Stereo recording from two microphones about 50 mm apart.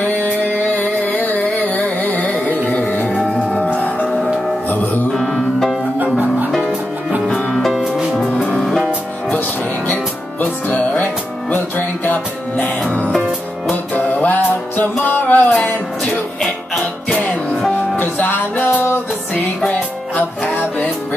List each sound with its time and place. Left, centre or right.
0.0 s music: left
5.1 s music: centre
7.4 s music: centre
8.4 s music: centre
8.6 s music: centre
10.4 s music: left
13.9 s music: left
16.3 s music: centre
17.2 s music: left
17.9 s music: left